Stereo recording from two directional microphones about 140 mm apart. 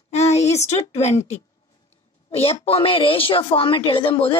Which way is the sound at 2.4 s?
45° left (ahead or behind).